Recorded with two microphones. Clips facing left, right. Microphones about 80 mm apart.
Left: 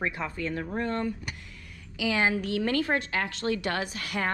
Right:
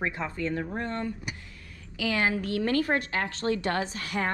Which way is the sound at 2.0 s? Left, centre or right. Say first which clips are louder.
Left 1 dB; centre.